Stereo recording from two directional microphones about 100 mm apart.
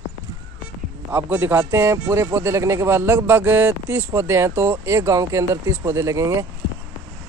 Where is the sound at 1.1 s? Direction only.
20° right (ahead or behind).